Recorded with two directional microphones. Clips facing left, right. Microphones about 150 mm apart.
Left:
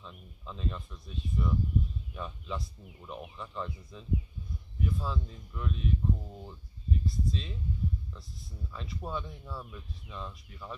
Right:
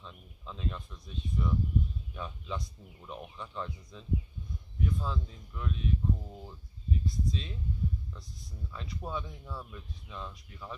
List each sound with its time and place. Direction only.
0.0 s speech: centre (ahead or behind)